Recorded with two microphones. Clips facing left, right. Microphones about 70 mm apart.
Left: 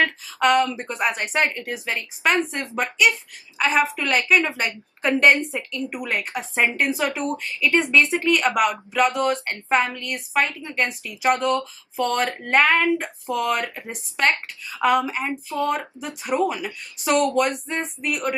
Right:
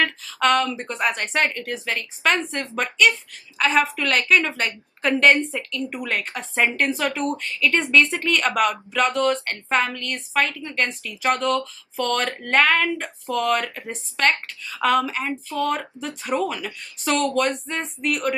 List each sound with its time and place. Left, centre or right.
0.0 s a woman's voice: centre